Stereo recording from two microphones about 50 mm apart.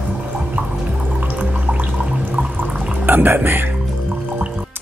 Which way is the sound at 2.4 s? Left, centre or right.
Right.